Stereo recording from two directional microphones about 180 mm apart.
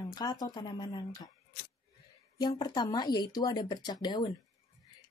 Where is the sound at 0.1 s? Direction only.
20° left (ahead or behind).